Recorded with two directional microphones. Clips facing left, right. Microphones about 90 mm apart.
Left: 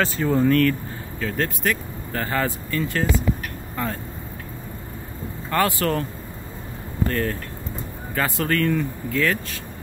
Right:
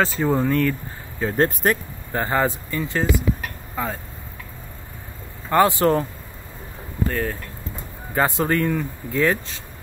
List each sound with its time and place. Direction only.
0.2 s speech: 10° right (ahead or behind)
1.3 s speech: 40° right (ahead or behind)
2.1 s speech: 20° right (ahead or behind)
5.5 s speech: 20° right (ahead or behind)
7.1 s speech: 10° right (ahead or behind)